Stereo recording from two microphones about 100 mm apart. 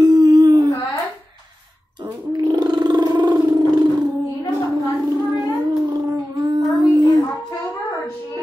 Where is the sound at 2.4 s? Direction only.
40° right (ahead or behind).